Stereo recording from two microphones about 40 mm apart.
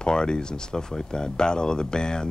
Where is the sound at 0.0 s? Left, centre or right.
Left.